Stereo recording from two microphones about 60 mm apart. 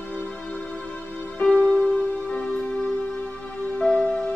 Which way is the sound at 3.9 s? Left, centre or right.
Centre.